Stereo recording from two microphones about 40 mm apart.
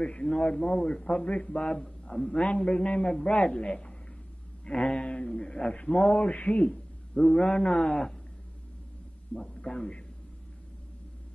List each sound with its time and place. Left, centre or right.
0.0 s speech: left
1.0 s speech: left
9.4 s speech: left